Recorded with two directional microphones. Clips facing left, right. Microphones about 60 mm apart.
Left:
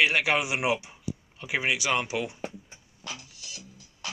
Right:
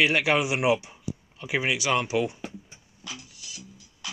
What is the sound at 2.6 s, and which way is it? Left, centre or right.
Music, left.